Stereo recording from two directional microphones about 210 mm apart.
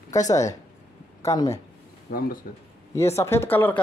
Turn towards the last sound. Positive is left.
turn(degrees=10)  # may be behind; listen again after turning